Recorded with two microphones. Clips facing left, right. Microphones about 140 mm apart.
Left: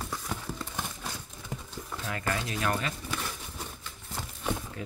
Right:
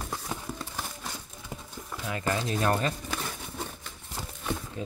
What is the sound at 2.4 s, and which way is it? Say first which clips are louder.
Speech: right 4 dB; 35° right (ahead or behind).